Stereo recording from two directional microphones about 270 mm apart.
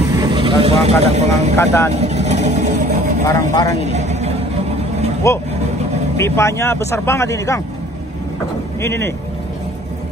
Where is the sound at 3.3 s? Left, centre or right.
Centre.